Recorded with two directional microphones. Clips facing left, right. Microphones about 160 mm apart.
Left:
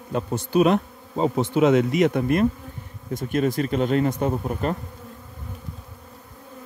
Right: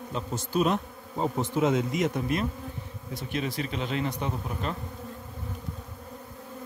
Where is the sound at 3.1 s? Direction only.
50° left (ahead or behind).